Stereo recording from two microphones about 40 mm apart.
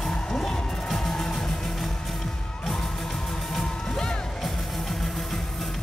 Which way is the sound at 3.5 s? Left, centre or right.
Centre.